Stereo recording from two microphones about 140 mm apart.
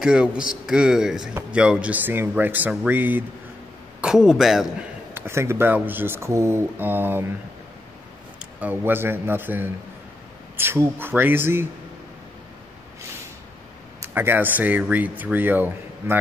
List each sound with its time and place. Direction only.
0.0 s a man's voice: 5° right (ahead or behind)
4.0 s a man's voice: 5° right (ahead or behind)
5.1 s speech: 20° right (ahead or behind)
8.4 s speech: 10° right (ahead or behind)
14.1 s speech: 15° right (ahead or behind)